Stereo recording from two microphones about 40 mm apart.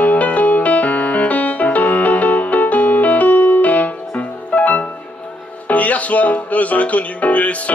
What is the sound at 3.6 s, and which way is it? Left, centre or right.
Music, left.